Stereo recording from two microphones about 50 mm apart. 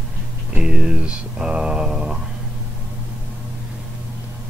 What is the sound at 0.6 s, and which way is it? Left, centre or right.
Mantra, centre.